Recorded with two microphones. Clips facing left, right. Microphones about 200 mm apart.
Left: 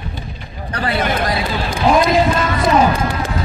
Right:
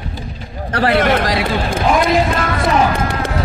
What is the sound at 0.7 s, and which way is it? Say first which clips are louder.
Speech: right 5 dB; 75° right (ahead or behind).